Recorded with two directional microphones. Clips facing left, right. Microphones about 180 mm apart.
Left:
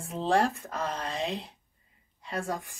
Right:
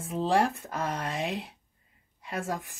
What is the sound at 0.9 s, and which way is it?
Speech, 15° right (ahead or behind).